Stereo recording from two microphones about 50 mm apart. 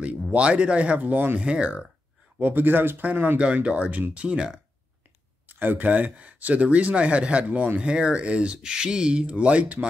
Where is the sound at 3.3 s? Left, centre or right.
Right.